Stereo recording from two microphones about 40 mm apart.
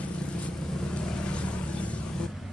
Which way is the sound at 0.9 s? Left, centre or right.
Left.